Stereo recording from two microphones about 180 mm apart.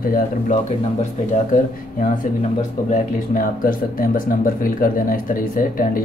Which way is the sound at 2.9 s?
50° left (ahead or behind).